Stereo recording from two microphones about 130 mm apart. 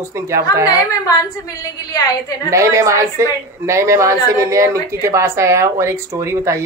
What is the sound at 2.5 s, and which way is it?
Speech, 25° right (ahead or behind).